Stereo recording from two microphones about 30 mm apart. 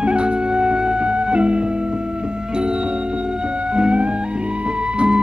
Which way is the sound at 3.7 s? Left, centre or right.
Right.